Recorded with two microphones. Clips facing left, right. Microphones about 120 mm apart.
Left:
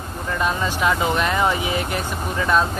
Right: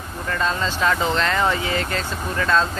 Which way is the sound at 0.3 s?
15° left (ahead or behind).